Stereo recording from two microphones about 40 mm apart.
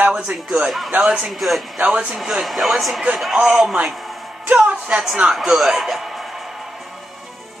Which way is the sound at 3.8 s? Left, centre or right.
Centre.